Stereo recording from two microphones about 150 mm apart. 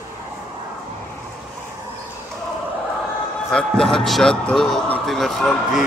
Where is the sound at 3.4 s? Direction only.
Centre (ahead or behind).